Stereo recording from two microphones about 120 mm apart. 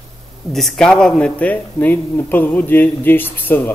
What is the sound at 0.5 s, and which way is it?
A man's voice, centre (ahead or behind).